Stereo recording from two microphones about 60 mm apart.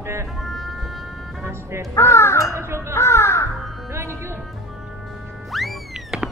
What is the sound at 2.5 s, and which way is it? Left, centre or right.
Speech, right.